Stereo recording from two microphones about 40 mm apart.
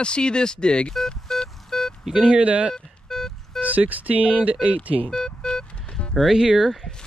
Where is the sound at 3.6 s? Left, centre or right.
Right.